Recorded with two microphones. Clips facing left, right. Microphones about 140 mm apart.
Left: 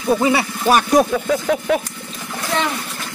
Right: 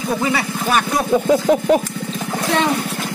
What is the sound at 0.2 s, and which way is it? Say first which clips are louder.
Speech: left 3 dB; 25° left (ahead or behind).